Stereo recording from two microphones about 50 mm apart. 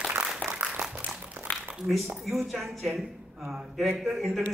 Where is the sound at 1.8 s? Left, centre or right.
Centre.